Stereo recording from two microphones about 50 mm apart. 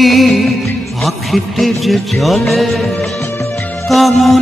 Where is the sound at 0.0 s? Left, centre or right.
Centre.